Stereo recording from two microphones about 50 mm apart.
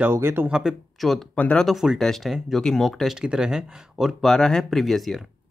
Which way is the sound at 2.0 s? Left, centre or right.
Centre.